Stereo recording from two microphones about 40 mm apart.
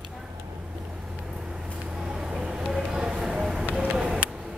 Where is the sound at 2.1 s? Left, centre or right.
Centre.